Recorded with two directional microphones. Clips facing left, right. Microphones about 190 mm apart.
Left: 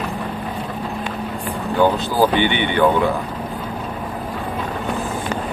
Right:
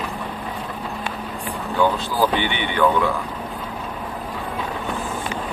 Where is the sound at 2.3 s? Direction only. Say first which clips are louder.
Left 5 dB; centre (ahead or behind).